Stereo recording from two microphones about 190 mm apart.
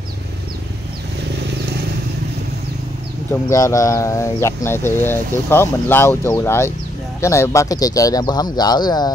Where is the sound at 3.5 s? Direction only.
15° left (ahead or behind).